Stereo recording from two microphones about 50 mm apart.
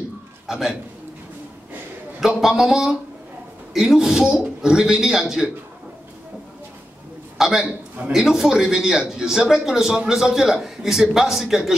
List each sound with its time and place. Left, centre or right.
0.5 s a man's voice: centre
2.1 s a man's voice: centre
7.3 s a man's voice: centre